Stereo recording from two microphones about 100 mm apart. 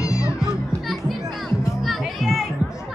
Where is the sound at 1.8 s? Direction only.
Centre (ahead or behind).